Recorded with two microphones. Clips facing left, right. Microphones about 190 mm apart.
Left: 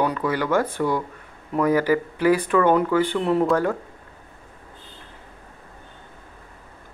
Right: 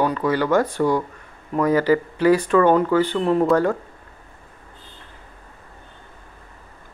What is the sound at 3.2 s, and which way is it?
Speech, 25° right (ahead or behind).